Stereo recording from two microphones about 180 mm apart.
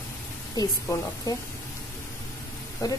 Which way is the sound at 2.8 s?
20° left (ahead or behind).